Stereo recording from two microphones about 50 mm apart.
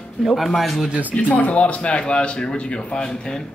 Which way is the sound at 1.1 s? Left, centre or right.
Left.